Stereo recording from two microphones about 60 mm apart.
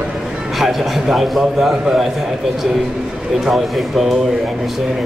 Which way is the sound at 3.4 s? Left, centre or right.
Centre.